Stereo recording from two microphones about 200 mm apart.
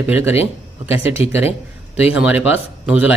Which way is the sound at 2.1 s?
5° right (ahead or behind).